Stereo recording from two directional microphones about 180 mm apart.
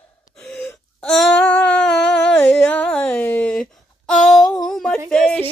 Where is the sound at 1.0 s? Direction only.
10° left (ahead or behind).